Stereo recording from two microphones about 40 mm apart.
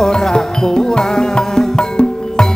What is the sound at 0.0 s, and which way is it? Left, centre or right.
Music, centre.